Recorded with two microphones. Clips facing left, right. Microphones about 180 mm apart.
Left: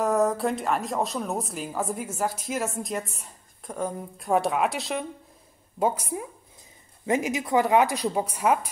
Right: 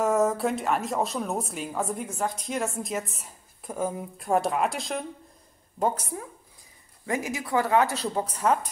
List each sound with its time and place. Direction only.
0.0 s a woman's voice: centre (ahead or behind)